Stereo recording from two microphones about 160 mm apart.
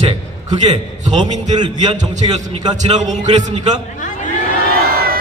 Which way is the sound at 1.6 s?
25° right (ahead or behind).